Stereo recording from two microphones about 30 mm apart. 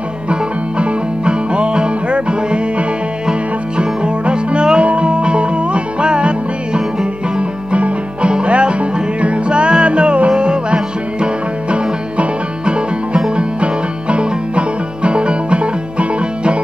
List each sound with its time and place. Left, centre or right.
0.3 s music: right